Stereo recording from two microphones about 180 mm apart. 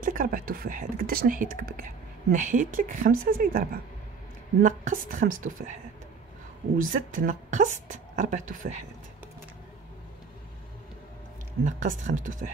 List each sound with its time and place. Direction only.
0.0 s a woman's voice: 50° right (ahead or behind)
6.8 s a woman's voice: 50° right (ahead or behind)
11.6 s a woman's voice: 45° right (ahead or behind)